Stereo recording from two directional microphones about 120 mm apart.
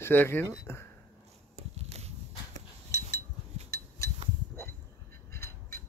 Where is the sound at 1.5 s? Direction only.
60° right (ahead or behind).